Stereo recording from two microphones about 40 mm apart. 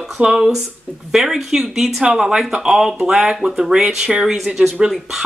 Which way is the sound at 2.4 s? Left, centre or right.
Centre.